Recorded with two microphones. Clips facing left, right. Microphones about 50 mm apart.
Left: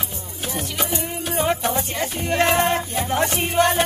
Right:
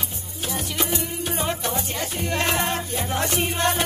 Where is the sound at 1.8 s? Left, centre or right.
Left; by 3.8 s centre.